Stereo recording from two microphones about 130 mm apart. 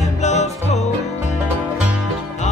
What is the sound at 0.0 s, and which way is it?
Music, 60° left (ahead or behind).